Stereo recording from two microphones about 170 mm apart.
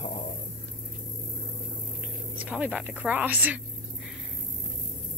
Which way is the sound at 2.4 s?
10° right (ahead or behind).